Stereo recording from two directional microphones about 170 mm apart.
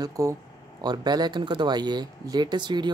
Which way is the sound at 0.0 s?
20° right (ahead or behind).